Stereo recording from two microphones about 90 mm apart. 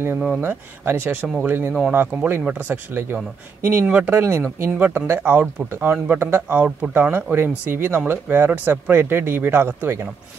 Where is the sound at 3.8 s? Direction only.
15° right (ahead or behind).